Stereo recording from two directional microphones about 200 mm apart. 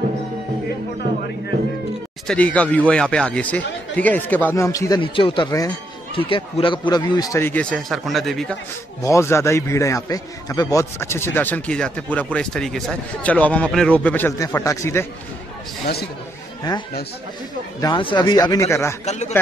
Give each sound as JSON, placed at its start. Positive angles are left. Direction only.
{"t": 2.2, "sound": "a man's voice", "side_deg": 5}
{"t": 9.0, "sound": "a man's voice", "side_deg": 15}
{"t": 17.7, "sound": "speech", "side_deg": 20}
{"t": 19.0, "sound": "speech", "side_deg": 35}